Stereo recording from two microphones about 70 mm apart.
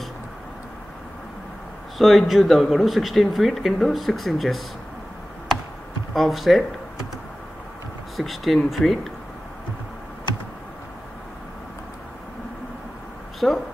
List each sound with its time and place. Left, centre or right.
2.0 s speech: centre
6.1 s speech: centre
8.2 s speech: centre
13.4 s speech: centre